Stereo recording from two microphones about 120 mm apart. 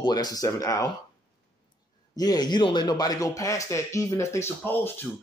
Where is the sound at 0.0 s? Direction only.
35° left (ahead or behind).